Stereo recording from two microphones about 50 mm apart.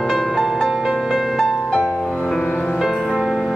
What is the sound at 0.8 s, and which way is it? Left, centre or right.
Music, centre.